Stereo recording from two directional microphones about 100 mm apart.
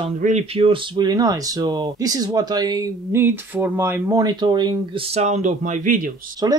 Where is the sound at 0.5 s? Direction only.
70° right (ahead or behind).